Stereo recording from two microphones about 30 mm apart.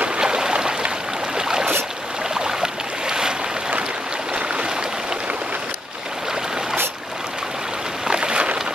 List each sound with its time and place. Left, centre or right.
0.2 s stream: right
1.3 s boat: right
8.1 s a sound: right